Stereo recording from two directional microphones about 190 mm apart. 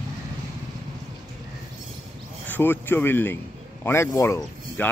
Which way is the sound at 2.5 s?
10° left (ahead or behind).